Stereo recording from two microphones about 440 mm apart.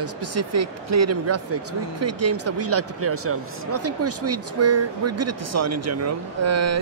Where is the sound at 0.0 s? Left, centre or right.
Right.